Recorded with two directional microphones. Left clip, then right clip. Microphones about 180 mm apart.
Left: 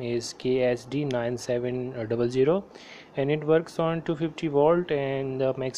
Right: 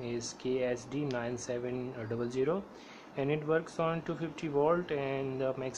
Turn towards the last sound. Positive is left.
turn(degrees=25)  # may be behind; listen again after turning